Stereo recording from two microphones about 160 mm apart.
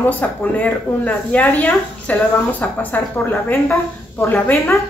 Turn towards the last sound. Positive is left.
turn(degrees=15)  # may be behind; listen again after turning